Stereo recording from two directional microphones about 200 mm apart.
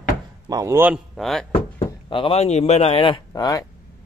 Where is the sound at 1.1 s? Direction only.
Centre (ahead or behind).